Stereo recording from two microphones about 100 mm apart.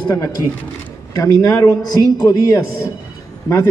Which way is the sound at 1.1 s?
35° left (ahead or behind).